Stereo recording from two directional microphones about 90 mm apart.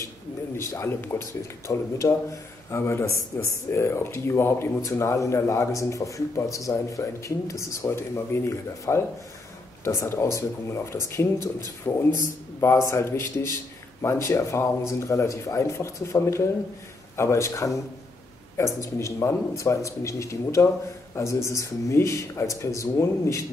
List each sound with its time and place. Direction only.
0.6 s a man's voice: 30° left (ahead or behind)
1.7 s a man's voice: 35° left (ahead or behind)